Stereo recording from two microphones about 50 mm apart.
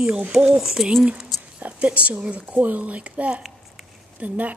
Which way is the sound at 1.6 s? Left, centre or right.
Right.